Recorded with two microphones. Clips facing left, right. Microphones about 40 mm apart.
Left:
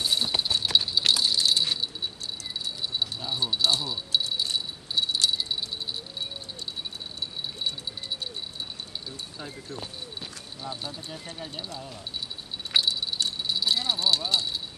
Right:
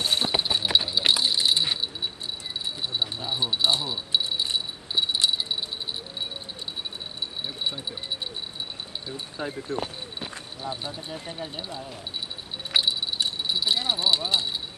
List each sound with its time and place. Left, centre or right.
0.0 s clip-clop: right
0.3 s clip-clop: centre
2.6 s rattle: right
7.6 s speech: right
9.7 s a sound: right
10.6 s speech: centre
12.7 s keys jangling: centre